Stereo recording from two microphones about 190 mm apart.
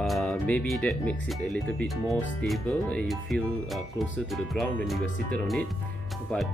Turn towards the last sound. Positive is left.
turn(degrees=5)  # may be behind; listen again after turning